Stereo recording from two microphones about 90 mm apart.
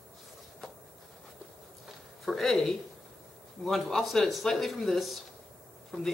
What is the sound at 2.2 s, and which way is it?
Speech, centre (ahead or behind).